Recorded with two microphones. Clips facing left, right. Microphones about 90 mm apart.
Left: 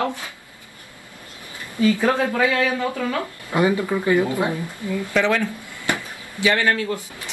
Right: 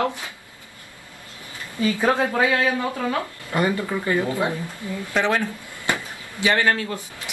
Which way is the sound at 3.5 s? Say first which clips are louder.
Left 4 dB; 15° left (ahead or behind).